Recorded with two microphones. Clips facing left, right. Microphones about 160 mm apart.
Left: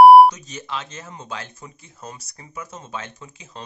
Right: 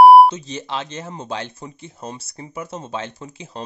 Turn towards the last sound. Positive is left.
turn(degrees=-30)  # may be behind; listen again after turning